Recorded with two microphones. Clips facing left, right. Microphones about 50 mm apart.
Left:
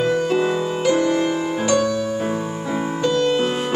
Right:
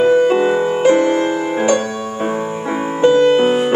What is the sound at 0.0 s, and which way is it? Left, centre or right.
Music, right.